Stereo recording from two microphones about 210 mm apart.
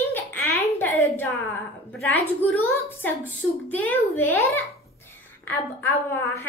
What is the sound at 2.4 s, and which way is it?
A woman's voice, 10° left (ahead or behind).